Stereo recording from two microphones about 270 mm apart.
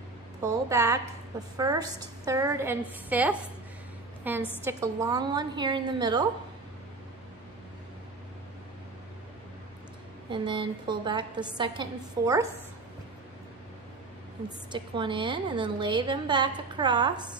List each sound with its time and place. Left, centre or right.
0.4 s a woman's voice: centre
10.3 s a woman's voice: centre
14.7 s a woman's voice: centre